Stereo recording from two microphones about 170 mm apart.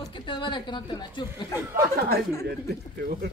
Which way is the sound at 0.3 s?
30° left (ahead or behind).